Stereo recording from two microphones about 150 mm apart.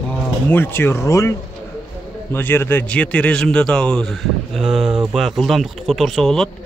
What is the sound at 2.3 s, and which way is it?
A man's voice, 15° left (ahead or behind).